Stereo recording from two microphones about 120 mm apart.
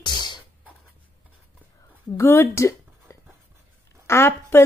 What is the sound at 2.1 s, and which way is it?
Speech, 20° left (ahead or behind).